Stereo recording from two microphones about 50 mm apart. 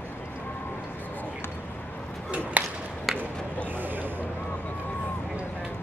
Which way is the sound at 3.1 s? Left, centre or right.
Centre.